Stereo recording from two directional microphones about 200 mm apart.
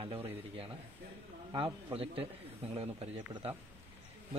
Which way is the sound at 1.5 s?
25° right (ahead or behind).